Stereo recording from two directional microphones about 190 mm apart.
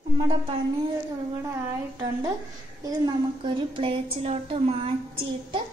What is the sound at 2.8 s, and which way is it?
A woman's voice, 25° right (ahead or behind).